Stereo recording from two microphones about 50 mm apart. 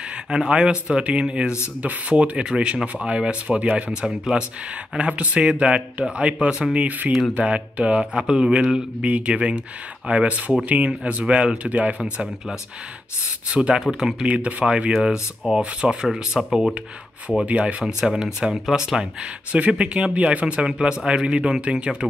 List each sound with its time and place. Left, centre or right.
0.3 s speech: centre
14.2 s speech: right
14.6 s speech: centre
16.1 s speech: centre
17.5 s speech: right
17.8 s speech: centre